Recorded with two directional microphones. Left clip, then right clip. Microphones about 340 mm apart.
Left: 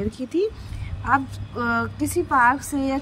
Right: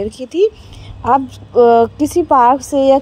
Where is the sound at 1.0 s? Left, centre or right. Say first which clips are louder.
Right 8 dB; right.